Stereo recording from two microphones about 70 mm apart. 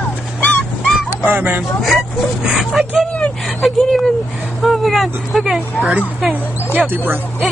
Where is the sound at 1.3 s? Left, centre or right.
Right.